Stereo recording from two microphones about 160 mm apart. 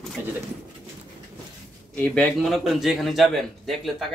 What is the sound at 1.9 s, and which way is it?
A man's voice, 10° left (ahead or behind).